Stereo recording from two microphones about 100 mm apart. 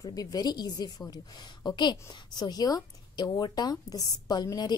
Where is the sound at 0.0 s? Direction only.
40° left (ahead or behind).